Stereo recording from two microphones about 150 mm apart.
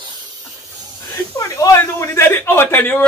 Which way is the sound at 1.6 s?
20° left (ahead or behind).